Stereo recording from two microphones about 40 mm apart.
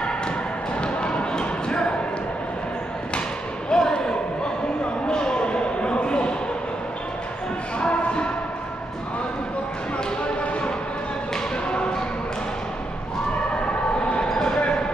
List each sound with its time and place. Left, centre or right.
0.7 s basketball bounce: left
3.7 s basketball bounce: centre
5.0 s a sound: left
7.8 s music: left
10.2 s basketball bounce: left
13.9 s a sound: left
14.3 s basketball bounce: centre